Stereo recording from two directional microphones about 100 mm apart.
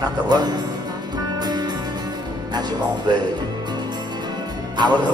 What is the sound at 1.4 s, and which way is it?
Music, 45° right (ahead or behind).